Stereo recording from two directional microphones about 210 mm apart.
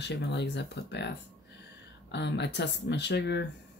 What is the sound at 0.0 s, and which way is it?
Speech, 55° left (ahead or behind).